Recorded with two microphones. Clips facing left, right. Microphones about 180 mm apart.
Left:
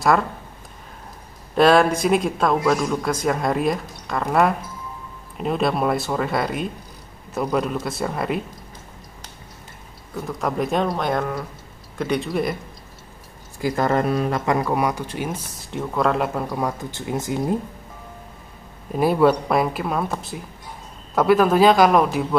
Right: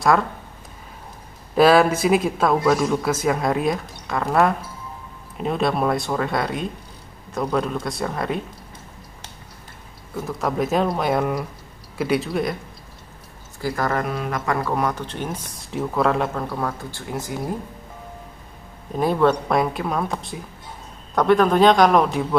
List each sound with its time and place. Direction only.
1.5 s a man's voice: 5° right (ahead or behind)
10.1 s a man's voice: centre (ahead or behind)
13.6 s speech: 20° left (ahead or behind)
14.4 s speech: 15° left (ahead or behind); by 16.3 s centre (ahead or behind)
16.3 s speech: 15° left (ahead or behind)
18.9 s a man's voice: 5° left (ahead or behind)